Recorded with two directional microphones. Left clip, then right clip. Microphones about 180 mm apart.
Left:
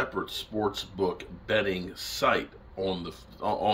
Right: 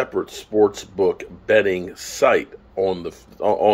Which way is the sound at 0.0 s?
10° right (ahead or behind).